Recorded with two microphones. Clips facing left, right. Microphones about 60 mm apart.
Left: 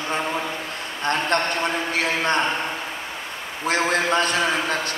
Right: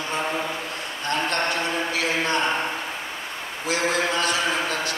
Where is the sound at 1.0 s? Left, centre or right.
Left.